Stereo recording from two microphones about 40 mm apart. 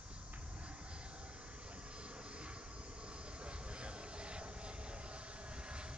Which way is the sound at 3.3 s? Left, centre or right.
Right.